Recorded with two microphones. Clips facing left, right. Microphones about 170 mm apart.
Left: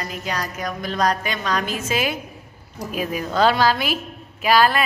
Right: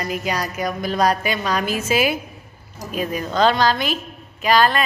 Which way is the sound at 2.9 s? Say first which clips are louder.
Right 1 dB; 5° left (ahead or behind).